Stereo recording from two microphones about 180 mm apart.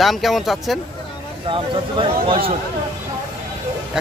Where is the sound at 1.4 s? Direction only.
30° right (ahead or behind).